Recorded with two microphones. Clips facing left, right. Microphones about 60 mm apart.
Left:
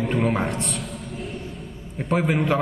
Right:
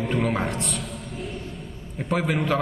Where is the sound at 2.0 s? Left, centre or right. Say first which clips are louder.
Left 2 dB; centre.